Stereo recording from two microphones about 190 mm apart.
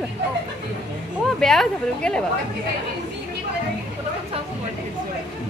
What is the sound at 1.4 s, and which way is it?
Speech, centre (ahead or behind).